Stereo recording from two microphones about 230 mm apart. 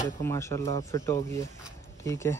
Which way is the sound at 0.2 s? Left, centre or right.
Centre.